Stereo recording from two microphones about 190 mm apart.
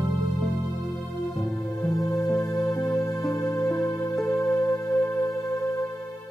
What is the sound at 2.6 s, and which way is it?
Music, centre (ahead or behind).